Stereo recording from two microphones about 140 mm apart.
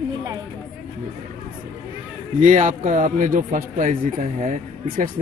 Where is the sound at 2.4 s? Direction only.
60° right (ahead or behind).